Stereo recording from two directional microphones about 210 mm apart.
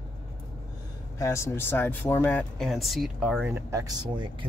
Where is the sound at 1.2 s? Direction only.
15° left (ahead or behind).